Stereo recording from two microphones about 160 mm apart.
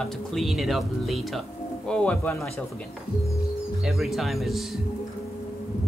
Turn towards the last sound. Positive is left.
turn(degrees=0)  # may be behind; listen again after turning